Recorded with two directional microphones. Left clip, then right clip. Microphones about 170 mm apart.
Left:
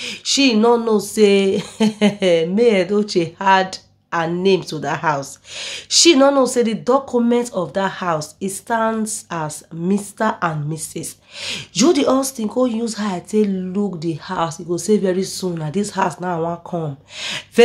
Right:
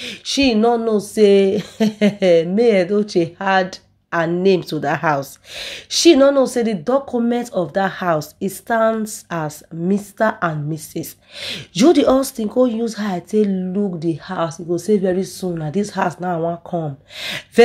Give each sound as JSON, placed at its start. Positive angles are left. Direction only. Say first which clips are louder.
{"t": 0.0, "sound": "speech", "louder": "left 1 dB", "side_deg": -20}
{"t": 16.3, "sound": "speech", "louder": "right 1 dB", "side_deg": -10}